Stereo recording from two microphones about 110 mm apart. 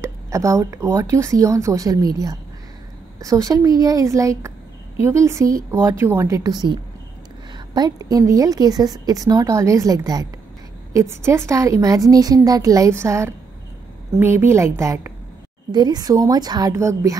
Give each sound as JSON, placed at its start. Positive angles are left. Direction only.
{"t": 0.0, "sound": "a woman's voice", "side_deg": -30}
{"t": 11.2, "sound": "a woman's voice", "side_deg": -25}
{"t": 15.7, "sound": "a woman's voice", "side_deg": -40}
{"t": 16.7, "sound": "speech", "side_deg": -30}